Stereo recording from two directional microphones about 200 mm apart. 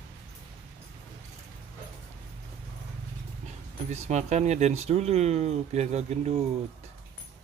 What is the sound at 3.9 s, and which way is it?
Speech, 35° right (ahead or behind).